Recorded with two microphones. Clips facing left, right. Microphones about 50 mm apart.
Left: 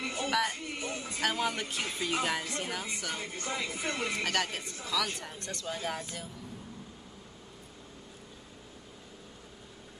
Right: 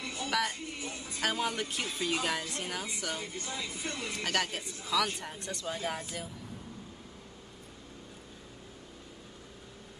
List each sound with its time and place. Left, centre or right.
0.0 s music: left
0.3 s speech: centre
0.7 s music: left
1.2 s speech: centre
3.2 s speech: left
4.2 s speech: centre